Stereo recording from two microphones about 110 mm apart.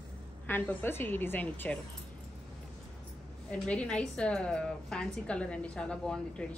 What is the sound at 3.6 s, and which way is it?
A woman's voice, 10° left (ahead or behind).